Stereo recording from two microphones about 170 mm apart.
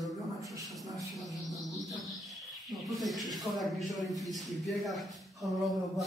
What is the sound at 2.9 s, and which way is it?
Speech, centre (ahead or behind).